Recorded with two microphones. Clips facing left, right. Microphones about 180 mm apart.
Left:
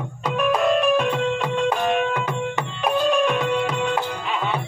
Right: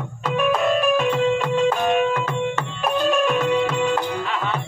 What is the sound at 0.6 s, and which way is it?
Music, centre (ahead or behind).